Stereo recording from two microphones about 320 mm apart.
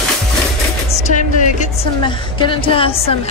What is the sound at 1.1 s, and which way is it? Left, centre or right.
A woman's voice, left.